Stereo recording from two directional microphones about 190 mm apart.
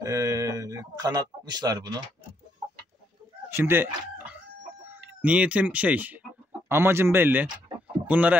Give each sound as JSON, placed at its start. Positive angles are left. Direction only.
{"t": 0.0, "sound": "a sound", "side_deg": -15}
{"t": 3.4, "sound": "chicken", "side_deg": -10}
{"t": 4.8, "sound": "a man's voice", "side_deg": -10}